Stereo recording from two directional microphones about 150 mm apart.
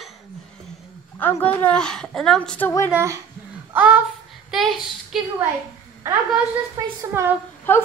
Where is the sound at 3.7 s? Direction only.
10° right (ahead or behind).